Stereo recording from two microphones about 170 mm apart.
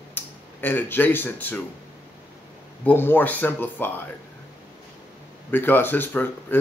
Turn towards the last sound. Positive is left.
turn(degrees=10)  # may be behind; listen again after turning